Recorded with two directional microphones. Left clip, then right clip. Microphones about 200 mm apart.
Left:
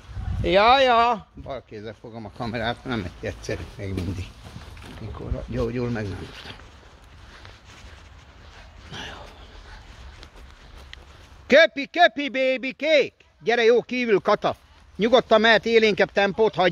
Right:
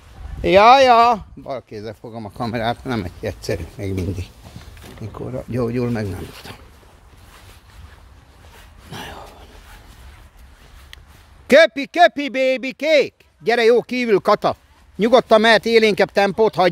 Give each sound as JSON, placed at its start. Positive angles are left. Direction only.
{"t": 0.4, "sound": "speech", "side_deg": -45}
{"t": 5.5, "sound": "speech", "side_deg": -35}
{"t": 8.9, "sound": "dog", "side_deg": -35}
{"t": 11.4, "sound": "a man's voice", "side_deg": -35}